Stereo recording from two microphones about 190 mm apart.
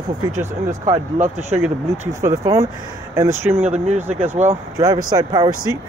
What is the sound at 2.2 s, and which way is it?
Speech, 15° right (ahead or behind).